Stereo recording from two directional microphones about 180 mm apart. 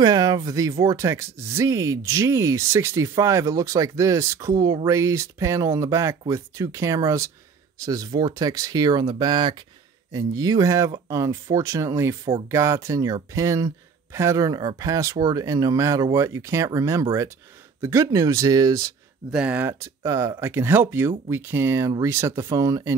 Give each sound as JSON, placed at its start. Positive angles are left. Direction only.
{"t": 0.0, "sound": "speech", "side_deg": -20}
{"t": 19.3, "sound": "speech", "side_deg": -10}